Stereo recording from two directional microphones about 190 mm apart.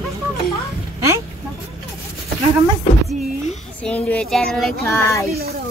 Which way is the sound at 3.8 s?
5° left (ahead or behind).